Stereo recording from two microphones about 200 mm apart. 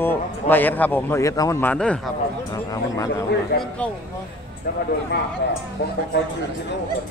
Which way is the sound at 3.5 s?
55° left (ahead or behind).